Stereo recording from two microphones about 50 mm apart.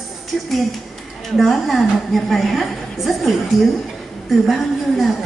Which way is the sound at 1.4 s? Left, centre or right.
Centre.